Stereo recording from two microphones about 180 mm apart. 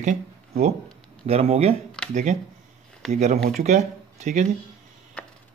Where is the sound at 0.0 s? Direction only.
40° right (ahead or behind).